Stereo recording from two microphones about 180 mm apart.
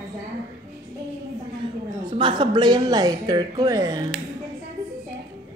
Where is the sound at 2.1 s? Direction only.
25° right (ahead or behind).